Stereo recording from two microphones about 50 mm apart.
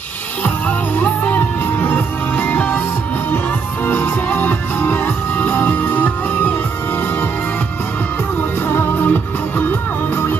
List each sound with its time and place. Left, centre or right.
0.4 s music: left
4.0 s music: left
8.4 s music: left